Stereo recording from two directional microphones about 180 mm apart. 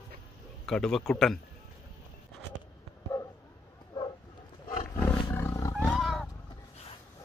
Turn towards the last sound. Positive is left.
turn(degrees=0)  # may be behind; listen again after turning